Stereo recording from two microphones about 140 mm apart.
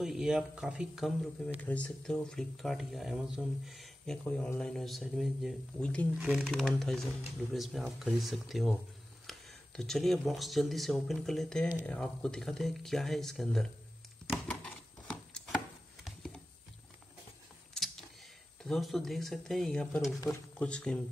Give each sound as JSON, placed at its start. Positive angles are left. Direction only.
{"t": 0.0, "sound": "speech", "side_deg": -5}
{"t": 1.6, "sound": "speech", "side_deg": 10}
{"t": 6.1, "sound": "speech", "side_deg": -5}
{"t": 14.3, "sound": "a sound", "side_deg": 5}
{"t": 15.5, "sound": "chopping", "side_deg": 0}
{"t": 18.6, "sound": "speech", "side_deg": 0}